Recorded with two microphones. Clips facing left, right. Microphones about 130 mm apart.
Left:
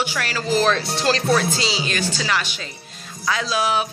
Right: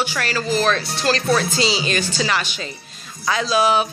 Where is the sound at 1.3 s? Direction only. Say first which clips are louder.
Right 1 dB; 5° left (ahead or behind).